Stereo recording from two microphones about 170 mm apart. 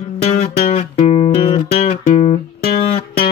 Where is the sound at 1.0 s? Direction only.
35° left (ahead or behind).